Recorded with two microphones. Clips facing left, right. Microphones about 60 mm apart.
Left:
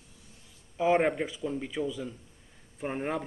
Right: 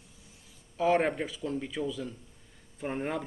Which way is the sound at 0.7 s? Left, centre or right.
Centre.